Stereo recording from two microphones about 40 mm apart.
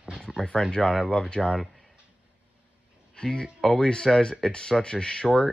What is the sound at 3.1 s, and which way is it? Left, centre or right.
Speech, centre.